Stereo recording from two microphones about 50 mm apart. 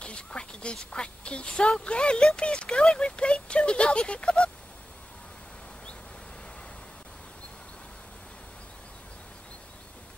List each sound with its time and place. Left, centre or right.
0.0 s a woman's voice: left